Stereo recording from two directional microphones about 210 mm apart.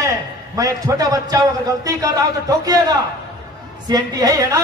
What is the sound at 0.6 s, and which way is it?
A man's voice, 15° right (ahead or behind).